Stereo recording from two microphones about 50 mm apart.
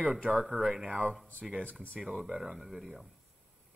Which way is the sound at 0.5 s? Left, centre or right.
Left.